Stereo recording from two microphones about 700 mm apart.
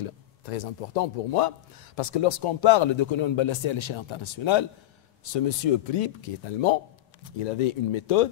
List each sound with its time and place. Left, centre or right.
0.0 s a man's voice: left
2.0 s speech: left